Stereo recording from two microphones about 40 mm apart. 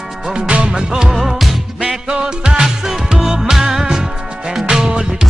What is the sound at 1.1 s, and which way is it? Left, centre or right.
Music, centre.